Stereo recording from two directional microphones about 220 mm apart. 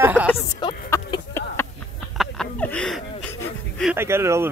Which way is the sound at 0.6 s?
15° left (ahead or behind).